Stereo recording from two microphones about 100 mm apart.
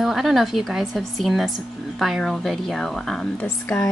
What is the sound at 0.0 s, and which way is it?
Speech, centre (ahead or behind).